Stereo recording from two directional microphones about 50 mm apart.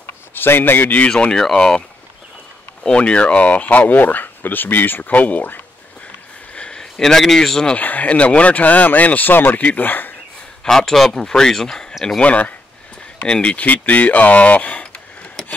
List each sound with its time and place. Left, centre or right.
0.3 s speech: left
1.4 s speech: centre; by 5.6 s left
6.5 s speech: centre
7.7 s speech: left
10.6 s speech: centre
12.2 s speech: left
13.7 s speech: left